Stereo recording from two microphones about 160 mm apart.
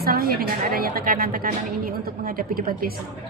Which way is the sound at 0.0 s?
70° right (ahead or behind).